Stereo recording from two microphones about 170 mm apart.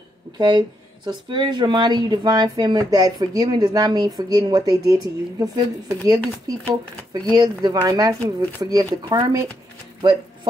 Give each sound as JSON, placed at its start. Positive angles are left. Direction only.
{"t": 0.4, "sound": "speech", "side_deg": -25}